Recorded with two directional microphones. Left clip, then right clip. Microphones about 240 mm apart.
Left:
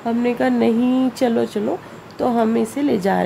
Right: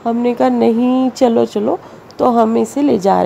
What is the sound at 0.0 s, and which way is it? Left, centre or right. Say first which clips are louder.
A woman's voice: right 5 dB; centre.